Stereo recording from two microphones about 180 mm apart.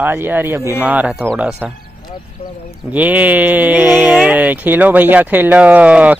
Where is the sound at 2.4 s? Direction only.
35° left (ahead or behind).